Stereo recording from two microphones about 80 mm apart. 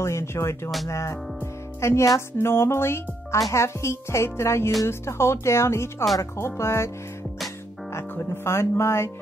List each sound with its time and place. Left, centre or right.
0.0 s speech: left
0.8 s music: left
2.1 s speech: left
7.9 s speech: left